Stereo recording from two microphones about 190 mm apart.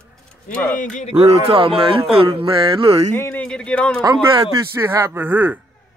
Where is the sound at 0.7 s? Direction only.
40° left (ahead or behind).